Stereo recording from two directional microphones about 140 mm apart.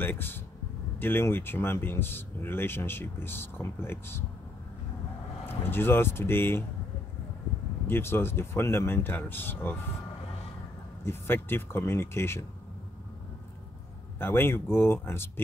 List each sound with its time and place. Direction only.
0.0 s speech: 15° left (ahead or behind)
5.5 s speech: 15° left (ahead or behind)
7.8 s speech: 15° left (ahead or behind)
11.1 s speech: 15° left (ahead or behind)
14.2 s speech: 15° left (ahead or behind)